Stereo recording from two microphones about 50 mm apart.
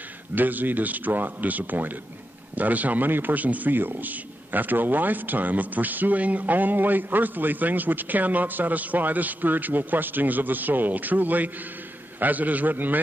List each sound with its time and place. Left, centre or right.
0.3 s a man's voice: right